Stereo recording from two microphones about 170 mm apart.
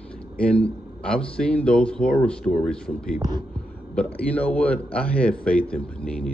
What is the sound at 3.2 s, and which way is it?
Speech, 25° right (ahead or behind).